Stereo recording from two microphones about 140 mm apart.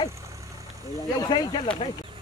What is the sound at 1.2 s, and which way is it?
Speech, 30° left (ahead or behind).